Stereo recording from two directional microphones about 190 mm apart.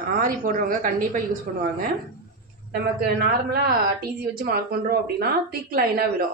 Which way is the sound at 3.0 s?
55° right (ahead or behind).